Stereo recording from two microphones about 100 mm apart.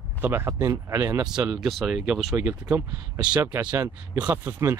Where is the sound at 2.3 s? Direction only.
15° right (ahead or behind).